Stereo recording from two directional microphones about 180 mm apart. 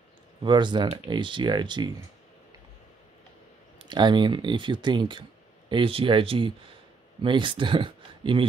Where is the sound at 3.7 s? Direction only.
25° right (ahead or behind).